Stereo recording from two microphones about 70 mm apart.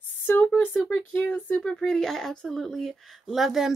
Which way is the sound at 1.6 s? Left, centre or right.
Centre.